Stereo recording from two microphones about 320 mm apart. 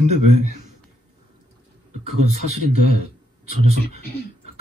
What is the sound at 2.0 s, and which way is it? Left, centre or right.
Speech, right.